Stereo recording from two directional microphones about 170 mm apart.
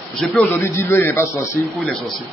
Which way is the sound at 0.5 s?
15° left (ahead or behind).